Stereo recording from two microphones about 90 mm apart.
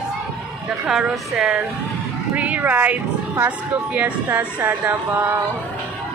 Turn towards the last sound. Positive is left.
turn(degrees=-20)  # may be behind; listen again after turning